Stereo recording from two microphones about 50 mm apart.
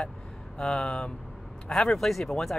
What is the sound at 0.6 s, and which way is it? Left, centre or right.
Speech, centre.